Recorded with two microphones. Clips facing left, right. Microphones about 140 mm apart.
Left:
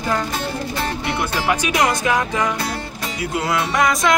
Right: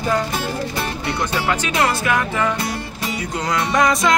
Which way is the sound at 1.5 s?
15° left (ahead or behind).